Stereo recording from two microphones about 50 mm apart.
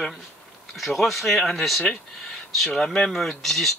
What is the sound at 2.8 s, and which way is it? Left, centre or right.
Speech, centre.